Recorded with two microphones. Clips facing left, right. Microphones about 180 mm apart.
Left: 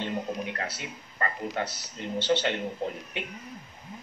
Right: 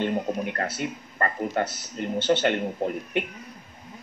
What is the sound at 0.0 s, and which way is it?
Speech, 50° right (ahead or behind).